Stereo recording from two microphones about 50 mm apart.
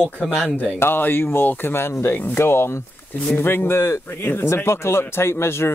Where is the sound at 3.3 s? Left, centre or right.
Left.